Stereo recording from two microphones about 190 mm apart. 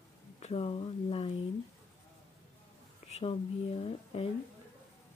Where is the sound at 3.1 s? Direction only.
30° left (ahead or behind).